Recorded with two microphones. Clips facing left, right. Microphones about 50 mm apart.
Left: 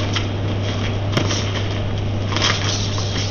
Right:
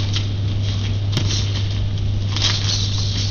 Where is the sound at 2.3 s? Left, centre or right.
Left.